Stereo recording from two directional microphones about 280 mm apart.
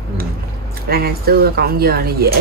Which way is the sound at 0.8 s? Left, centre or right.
Right.